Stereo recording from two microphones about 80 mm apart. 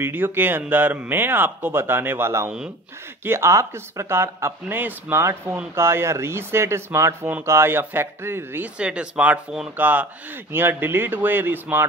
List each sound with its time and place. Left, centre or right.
0.0 s speech: right
8.7 s speech: centre